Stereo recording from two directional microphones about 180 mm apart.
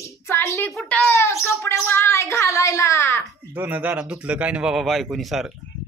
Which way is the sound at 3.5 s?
10° right (ahead or behind).